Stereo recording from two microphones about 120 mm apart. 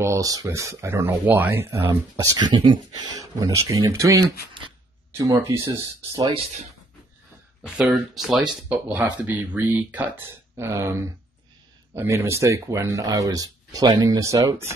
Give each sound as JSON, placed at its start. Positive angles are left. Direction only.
{"t": 0.0, "sound": "speech", "side_deg": -25}
{"t": 2.3, "sound": "speech", "side_deg": -40}
{"t": 4.6, "sound": "a sound", "side_deg": -45}
{"t": 5.1, "sound": "speech", "side_deg": -25}
{"t": 6.3, "sound": "speech", "side_deg": -70}
{"t": 7.6, "sound": "speech", "side_deg": -5}
{"t": 8.6, "sound": "speech", "side_deg": -10}